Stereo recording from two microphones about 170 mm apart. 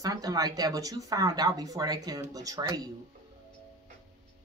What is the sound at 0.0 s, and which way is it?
Speech, 20° right (ahead or behind).